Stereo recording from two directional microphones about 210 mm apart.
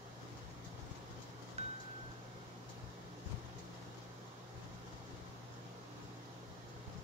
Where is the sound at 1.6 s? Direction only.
30° right (ahead or behind).